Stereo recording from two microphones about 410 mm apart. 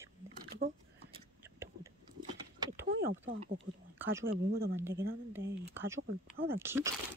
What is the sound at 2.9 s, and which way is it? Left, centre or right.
Speech, right.